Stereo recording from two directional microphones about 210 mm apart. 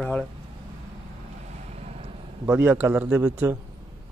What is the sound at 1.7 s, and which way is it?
Vehicle, 30° right (ahead or behind).